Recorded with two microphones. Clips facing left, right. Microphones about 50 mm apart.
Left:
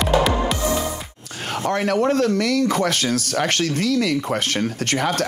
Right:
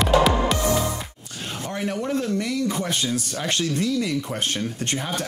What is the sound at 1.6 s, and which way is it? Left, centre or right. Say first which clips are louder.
Speech: left 8 dB; left.